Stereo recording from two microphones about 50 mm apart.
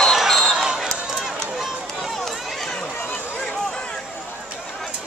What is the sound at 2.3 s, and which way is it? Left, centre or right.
Run, centre.